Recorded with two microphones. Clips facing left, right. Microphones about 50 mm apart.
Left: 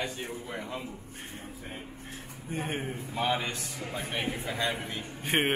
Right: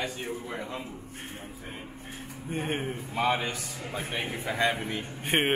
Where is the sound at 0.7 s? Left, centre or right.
Centre.